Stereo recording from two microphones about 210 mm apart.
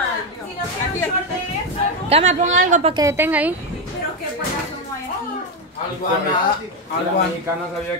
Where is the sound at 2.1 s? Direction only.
30° right (ahead or behind).